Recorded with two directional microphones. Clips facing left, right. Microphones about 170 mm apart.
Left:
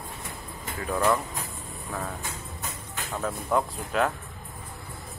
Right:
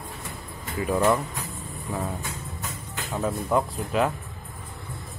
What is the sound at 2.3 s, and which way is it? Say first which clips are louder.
Music: right 2 dB; centre (ahead or behind).